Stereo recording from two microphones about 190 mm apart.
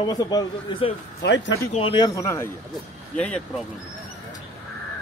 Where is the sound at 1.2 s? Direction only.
75° left (ahead or behind).